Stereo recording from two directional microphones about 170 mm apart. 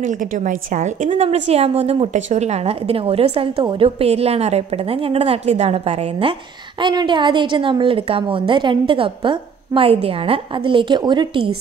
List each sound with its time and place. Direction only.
0.0 s a woman's voice: 50° right (ahead or behind); by 11.5 s 30° right (ahead or behind)